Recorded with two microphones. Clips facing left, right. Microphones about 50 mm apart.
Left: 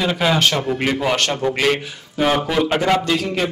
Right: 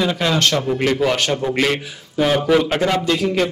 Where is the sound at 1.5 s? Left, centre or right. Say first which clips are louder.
Even; centre.